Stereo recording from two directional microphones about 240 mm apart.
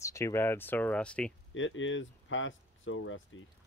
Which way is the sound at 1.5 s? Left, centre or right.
Left.